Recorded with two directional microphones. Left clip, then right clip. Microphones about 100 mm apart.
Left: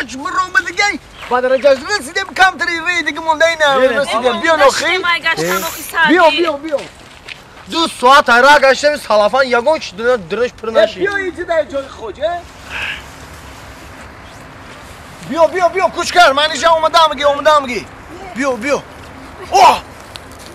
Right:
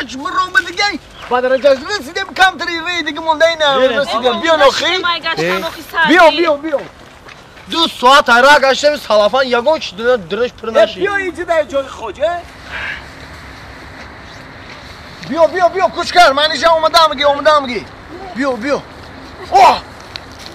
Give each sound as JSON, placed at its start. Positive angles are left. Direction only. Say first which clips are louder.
{"t": 0.0, "sound": "a man's voice", "louder": "right 1 dB", "side_deg": 5}
{"t": 5.0, "sound": "a man's voice", "louder": "left 1 dB", "side_deg": 15}
{"t": 7.7, "sound": "a man's voice", "louder": "even", "side_deg": 0}
{"t": 11.0, "sound": "speech", "louder": "right 1 dB", "side_deg": -65}
{"t": 12.7, "sound": "a sound", "louder": "left 1 dB", "side_deg": 20}
{"t": 15.3, "sound": "a man's voice", "louder": "right 1 dB", "side_deg": 10}
{"t": 19.5, "sound": "a sound", "louder": "even", "side_deg": 15}